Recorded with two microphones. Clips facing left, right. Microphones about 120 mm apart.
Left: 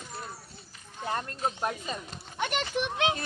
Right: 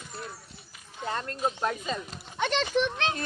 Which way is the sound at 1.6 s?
15° left (ahead or behind).